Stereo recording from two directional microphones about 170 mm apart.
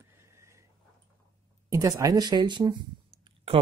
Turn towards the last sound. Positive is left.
turn(degrees=-30)  # may be behind; listen again after turning